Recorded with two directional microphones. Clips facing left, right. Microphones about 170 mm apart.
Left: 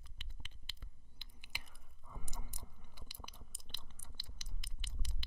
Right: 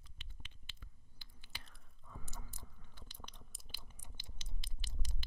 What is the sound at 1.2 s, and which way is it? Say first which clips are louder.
Chewing: left 1 dB; 15° left (ahead or behind).